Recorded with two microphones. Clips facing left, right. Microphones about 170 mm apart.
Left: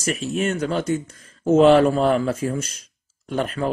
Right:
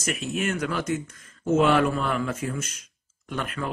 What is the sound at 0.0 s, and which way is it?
Speech, 35° left (ahead or behind).